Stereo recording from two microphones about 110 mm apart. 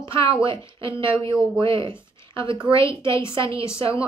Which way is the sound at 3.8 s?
55° right (ahead or behind).